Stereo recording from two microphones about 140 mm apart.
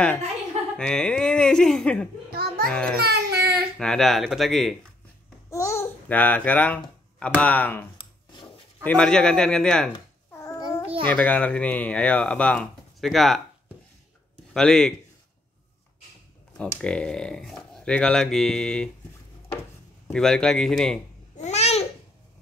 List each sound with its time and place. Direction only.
0.7 s speech: 5° left (ahead or behind)
2.3 s a sound: 90° right
2.7 s speech: 5° left (ahead or behind)
3.0 s child singing: 90° right
3.7 s speech: 5° left (ahead or behind)
5.5 s babbling: 20° left (ahead or behind)
6.0 s speech: 10° left (ahead or behind)
8.8 s speech: 5° left (ahead or behind)
10.3 s babbling: 20° left (ahead or behind)
11.1 s speech: 10° left (ahead or behind)
14.3 s a sound: 5° left (ahead or behind)
16.5 s speech: 5° left (ahead or behind)
20.1 s speech: 5° left (ahead or behind)
21.4 s babbling: 50° left (ahead or behind)